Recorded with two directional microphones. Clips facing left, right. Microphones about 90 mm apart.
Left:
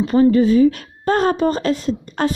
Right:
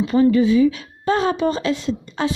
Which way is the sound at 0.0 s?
40° left (ahead or behind).